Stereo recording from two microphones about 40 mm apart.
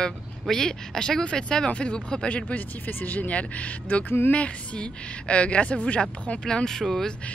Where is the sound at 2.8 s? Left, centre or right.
Left.